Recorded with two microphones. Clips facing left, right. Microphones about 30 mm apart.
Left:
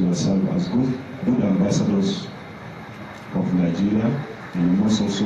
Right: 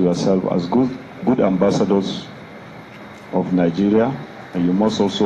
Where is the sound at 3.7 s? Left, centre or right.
Right.